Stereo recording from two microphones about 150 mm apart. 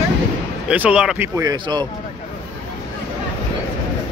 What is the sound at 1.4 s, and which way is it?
Speech, 25° right (ahead or behind).